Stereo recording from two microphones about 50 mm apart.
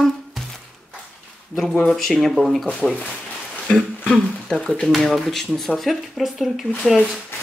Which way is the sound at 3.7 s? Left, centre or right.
Centre.